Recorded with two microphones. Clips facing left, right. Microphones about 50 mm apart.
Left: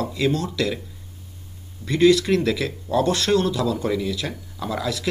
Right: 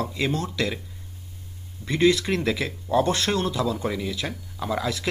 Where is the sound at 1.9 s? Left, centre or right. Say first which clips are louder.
Left 4 dB; right.